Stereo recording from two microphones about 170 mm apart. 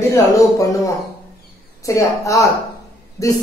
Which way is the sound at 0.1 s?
20° left (ahead or behind).